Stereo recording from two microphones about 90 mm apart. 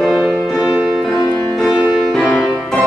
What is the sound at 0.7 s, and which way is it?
Music, centre (ahead or behind).